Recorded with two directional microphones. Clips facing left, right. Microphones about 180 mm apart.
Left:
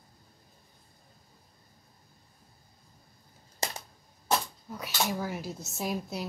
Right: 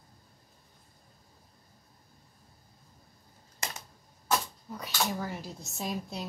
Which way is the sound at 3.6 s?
30° left (ahead or behind).